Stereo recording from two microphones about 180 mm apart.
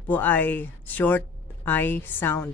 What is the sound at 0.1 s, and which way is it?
A woman's voice, 10° left (ahead or behind).